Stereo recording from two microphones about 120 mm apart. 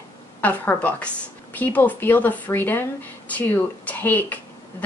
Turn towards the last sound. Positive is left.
turn(degrees=15)  # may be behind; listen again after turning